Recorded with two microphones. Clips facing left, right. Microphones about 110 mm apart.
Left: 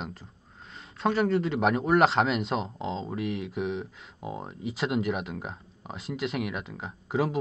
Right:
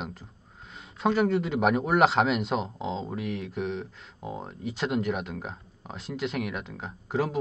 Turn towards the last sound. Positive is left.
turn(degrees=0)  # may be behind; listen again after turning